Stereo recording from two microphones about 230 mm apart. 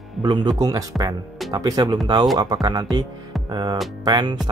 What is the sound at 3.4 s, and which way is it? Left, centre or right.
Music, centre.